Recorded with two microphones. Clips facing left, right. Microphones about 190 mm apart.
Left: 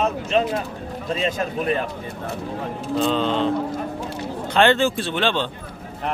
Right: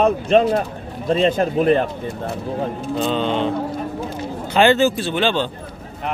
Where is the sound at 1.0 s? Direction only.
35° right (ahead or behind).